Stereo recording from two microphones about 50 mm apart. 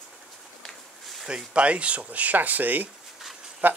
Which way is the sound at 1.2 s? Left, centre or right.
Right.